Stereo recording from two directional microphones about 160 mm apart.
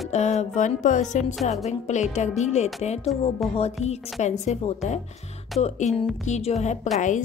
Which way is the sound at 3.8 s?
45° left (ahead or behind).